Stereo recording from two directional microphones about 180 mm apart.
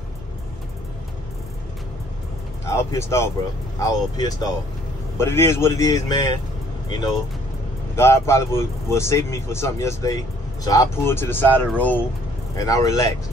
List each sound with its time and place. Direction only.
2.6 s speech: 15° left (ahead or behind)
7.9 s speech: 15° left (ahead or behind)